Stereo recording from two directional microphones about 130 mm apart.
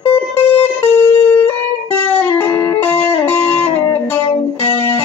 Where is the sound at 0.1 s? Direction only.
15° left (ahead or behind).